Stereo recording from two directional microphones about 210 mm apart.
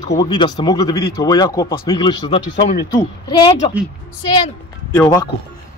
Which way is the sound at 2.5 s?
35° left (ahead or behind).